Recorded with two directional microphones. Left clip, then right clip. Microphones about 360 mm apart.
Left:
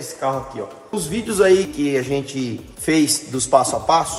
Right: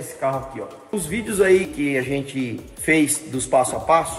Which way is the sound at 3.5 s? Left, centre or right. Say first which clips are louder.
Left 2 dB; centre.